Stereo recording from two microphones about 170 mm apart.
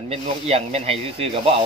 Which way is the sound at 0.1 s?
35° right (ahead or behind).